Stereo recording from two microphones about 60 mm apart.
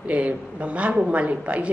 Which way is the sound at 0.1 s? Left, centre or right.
Right.